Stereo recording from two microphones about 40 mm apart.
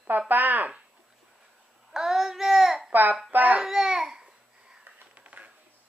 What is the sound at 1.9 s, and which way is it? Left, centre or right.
Babbling, centre.